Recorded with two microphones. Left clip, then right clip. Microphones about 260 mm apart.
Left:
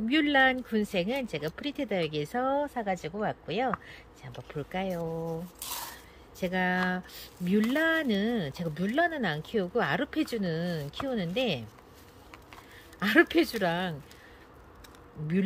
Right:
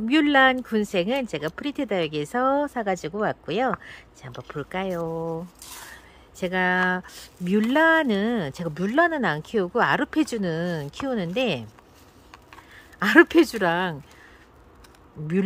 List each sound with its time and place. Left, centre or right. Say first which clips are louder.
0.0 s speech: right 6 dB; centre
5.0 s speech: right 6 dB; right
6.4 s speech: right 7 dB; centre
13.0 s speech: right 7 dB; centre